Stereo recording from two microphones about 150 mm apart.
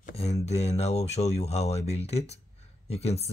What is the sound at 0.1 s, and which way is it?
Speech, 45° left (ahead or behind).